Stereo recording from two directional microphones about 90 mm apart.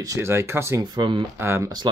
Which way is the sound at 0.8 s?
55° right (ahead or behind).